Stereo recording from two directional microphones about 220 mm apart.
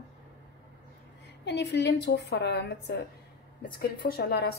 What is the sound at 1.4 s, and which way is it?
Speech, 50° left (ahead or behind).